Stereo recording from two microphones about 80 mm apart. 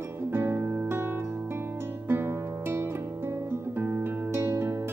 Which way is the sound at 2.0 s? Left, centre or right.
Right.